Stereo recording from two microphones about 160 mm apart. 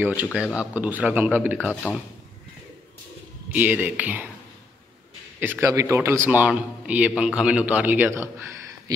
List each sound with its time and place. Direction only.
0.0 s a man's voice: 10° right (ahead or behind)
1.7 s speech: 10° left (ahead or behind)
3.5 s a man's voice: 10° right (ahead or behind)
5.4 s a man's voice: 15° right (ahead or behind)